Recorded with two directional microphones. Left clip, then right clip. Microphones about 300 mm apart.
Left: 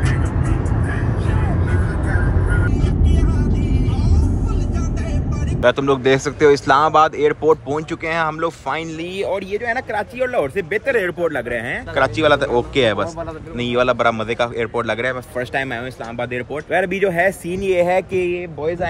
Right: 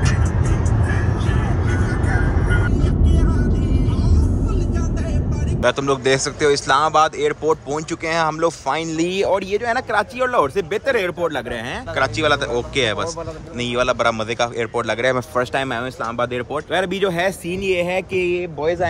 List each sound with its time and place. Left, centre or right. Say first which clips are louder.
2.7 s music: even; centre
5.6 s speech: left 3 dB; centre
8.9 s speech: right 4 dB; right; by 15.0 s centre
15.0 s speech: right 4 dB; centre
18.6 s speech: right 2 dB; right